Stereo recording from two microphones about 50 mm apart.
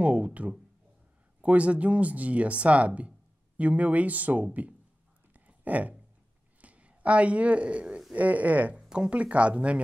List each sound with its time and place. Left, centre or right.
0.0 s speech: right
5.3 s a sound: right
6.6 s speech: right
8.7 s speech: centre